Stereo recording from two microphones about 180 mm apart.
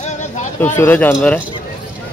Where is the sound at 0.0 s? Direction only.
40° left (ahead or behind).